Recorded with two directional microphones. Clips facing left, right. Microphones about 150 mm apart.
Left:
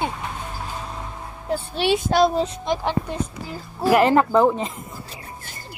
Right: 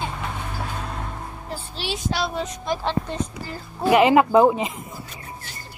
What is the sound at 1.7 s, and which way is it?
Speech, 55° left (ahead or behind).